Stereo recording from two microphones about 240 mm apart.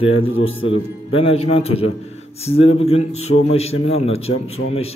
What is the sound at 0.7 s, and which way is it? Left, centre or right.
A man's voice, left.